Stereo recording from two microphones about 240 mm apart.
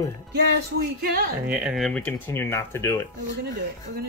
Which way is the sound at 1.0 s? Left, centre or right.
Right.